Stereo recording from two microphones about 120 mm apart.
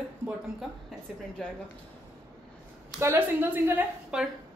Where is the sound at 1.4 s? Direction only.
5° left (ahead or behind).